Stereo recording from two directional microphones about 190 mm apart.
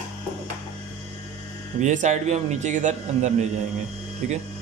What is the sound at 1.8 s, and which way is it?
Speech, 40° right (ahead or behind).